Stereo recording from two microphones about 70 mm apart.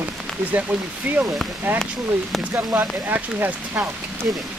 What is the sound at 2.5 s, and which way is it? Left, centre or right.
Speech, right.